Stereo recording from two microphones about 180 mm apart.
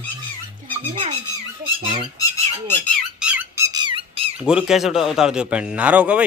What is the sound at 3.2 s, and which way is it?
Squawk, 10° right (ahead or behind).